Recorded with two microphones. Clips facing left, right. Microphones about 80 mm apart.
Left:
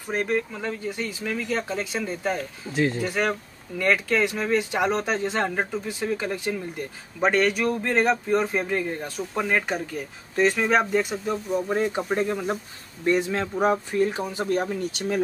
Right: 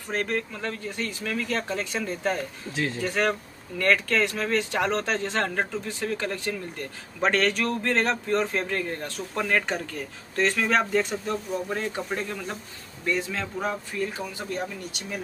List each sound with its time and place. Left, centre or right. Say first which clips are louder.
0.1 s speech: left 3 dB; centre
11.7 s speech: left 5 dB; centre
14.7 s speech: left 9 dB; left